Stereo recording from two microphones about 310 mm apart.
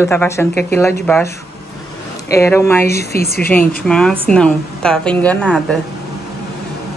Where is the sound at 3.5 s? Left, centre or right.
Centre.